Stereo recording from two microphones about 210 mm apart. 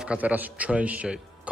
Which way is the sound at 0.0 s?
5° right (ahead or behind).